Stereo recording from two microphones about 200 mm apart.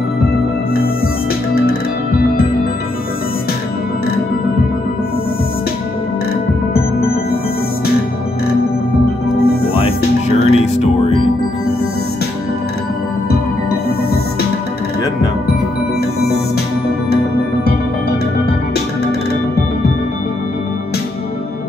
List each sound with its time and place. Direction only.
10.5 s music: 30° left (ahead or behind)